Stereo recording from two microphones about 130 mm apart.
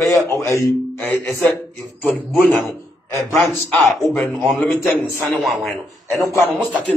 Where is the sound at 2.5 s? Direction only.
15° left (ahead or behind).